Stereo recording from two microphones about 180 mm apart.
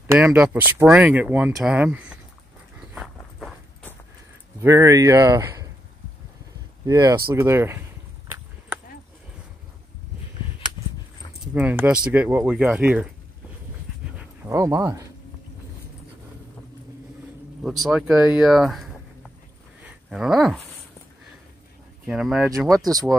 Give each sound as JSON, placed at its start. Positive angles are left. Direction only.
{"t": 0.0, "sound": "speech", "side_deg": -10}
{"t": 2.9, "sound": "dog", "side_deg": 0}
{"t": 4.6, "sound": "speech", "side_deg": -15}
{"t": 6.9, "sound": "speech", "side_deg": -20}
{"t": 11.5, "sound": "speech", "side_deg": -10}
{"t": 14.1, "sound": "dog", "side_deg": -15}
{"t": 17.6, "sound": "speech", "side_deg": 0}
{"t": 20.1, "sound": "speech", "side_deg": 0}
{"t": 22.0, "sound": "speech", "side_deg": -5}